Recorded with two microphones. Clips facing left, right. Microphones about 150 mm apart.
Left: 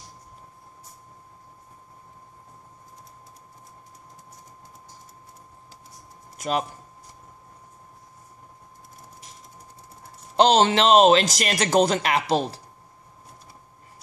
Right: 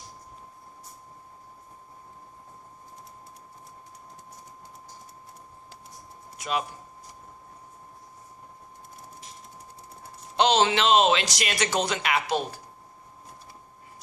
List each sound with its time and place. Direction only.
10.3 s speech: 40° left (ahead or behind)